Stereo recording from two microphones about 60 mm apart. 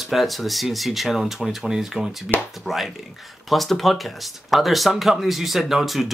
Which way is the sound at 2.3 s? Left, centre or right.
Left.